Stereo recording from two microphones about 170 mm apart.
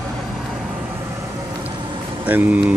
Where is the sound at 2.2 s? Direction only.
10° right (ahead or behind).